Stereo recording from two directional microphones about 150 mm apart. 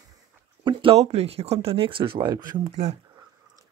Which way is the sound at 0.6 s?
35° right (ahead or behind).